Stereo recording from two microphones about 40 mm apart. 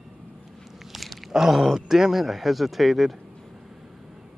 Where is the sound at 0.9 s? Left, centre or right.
Centre.